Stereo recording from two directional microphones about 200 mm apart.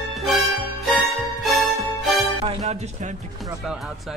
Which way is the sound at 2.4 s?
30° right (ahead or behind).